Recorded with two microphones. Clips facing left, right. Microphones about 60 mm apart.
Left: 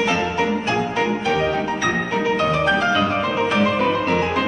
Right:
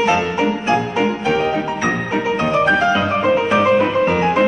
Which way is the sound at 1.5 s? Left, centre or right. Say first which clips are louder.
Right 2 dB; right.